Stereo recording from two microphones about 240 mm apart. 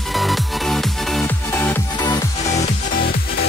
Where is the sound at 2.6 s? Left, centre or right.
Left.